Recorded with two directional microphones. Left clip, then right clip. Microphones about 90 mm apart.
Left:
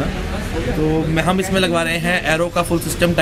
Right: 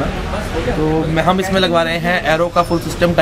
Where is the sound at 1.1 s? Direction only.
Centre (ahead or behind).